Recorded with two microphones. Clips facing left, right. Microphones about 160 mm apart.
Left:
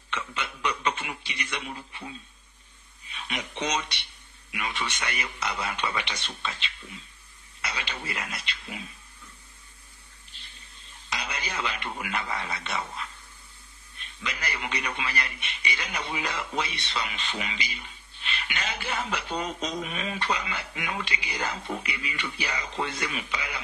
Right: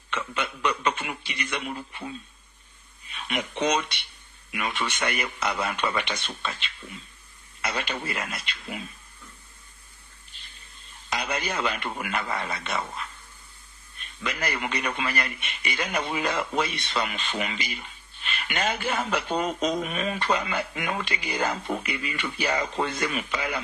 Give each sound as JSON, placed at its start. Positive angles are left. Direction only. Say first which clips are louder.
{"t": 0.1, "sound": "speech", "louder": "right 4 dB", "side_deg": -55}
{"t": 3.3, "sound": "speech", "louder": "right 5 dB", "side_deg": -55}
{"t": 11.1, "sound": "speech", "louder": "right 5 dB", "side_deg": -50}